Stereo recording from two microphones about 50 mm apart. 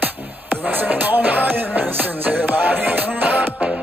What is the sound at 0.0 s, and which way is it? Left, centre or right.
Music, right.